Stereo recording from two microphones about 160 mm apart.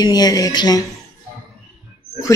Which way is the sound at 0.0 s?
25° left (ahead or behind).